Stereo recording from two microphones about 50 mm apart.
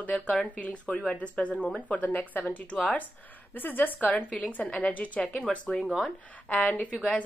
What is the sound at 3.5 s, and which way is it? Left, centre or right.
Speech, left.